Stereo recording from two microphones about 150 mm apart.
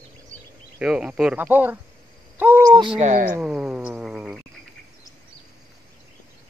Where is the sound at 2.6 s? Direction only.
30° right (ahead or behind).